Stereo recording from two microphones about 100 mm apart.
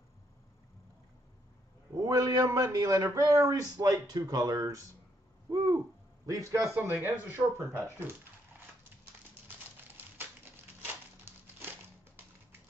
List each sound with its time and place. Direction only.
2.0 s a man's voice: 35° right (ahead or behind)
5.5 s hoot: 40° right (ahead or behind)
6.2 s a man's voice: 35° right (ahead or behind)
6.9 s speech: 20° right (ahead or behind)